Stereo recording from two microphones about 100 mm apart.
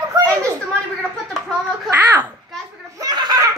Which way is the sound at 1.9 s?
15° right (ahead or behind).